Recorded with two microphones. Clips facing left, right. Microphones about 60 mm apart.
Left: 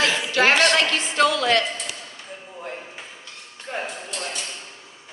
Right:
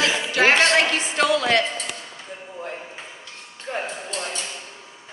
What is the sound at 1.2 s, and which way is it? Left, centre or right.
Music, right.